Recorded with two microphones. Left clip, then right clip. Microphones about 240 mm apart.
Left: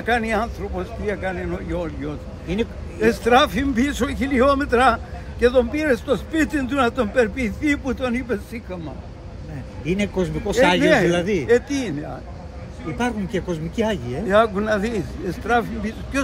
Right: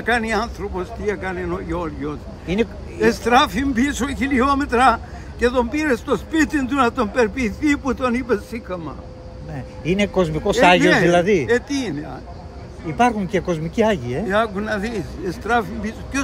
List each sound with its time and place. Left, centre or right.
0.0 s a man's voice: centre
2.4 s speech: right
3.0 s a man's voice: centre
9.8 s speech: right
10.8 s a man's voice: centre
11.1 s speech: right
11.4 s a man's voice: centre
12.9 s speech: right
14.2 s speech: centre